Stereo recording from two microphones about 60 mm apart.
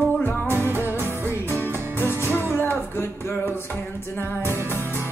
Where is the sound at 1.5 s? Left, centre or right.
Left.